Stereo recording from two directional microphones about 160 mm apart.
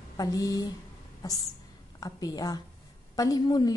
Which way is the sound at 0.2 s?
20° left (ahead or behind).